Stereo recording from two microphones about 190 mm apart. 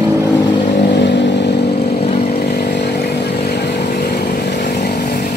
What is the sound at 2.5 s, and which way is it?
Vehicle, 60° left (ahead or behind).